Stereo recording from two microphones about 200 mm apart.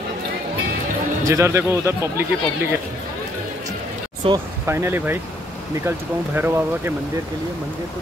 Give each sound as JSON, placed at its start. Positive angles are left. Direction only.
{"t": 1.2, "sound": "speech", "side_deg": -15}
{"t": 4.2, "sound": "speech", "side_deg": -25}
{"t": 4.6, "sound": "speech", "side_deg": -10}